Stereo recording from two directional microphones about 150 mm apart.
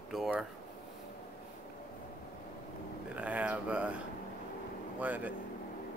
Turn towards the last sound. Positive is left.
turn(degrees=-10)  # may be behind; listen again after turning